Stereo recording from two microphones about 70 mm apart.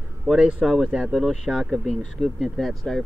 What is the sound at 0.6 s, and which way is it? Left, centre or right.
Speech, centre.